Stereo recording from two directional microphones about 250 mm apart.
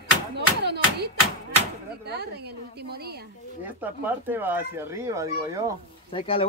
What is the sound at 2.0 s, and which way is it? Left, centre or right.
A woman's voice, right.